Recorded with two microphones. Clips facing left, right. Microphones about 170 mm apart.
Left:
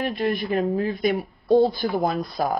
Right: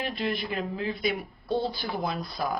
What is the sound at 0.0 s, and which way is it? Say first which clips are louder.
Speech: left 6 dB; 45° left (ahead or behind).